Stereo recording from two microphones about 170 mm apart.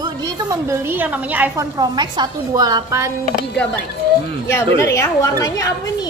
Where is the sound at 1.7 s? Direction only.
25° right (ahead or behind).